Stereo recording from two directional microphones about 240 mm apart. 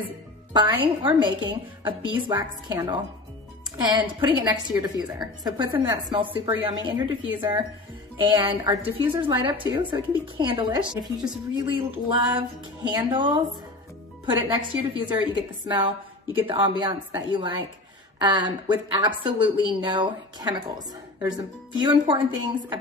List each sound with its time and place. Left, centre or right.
0.5 s a woman's voice: centre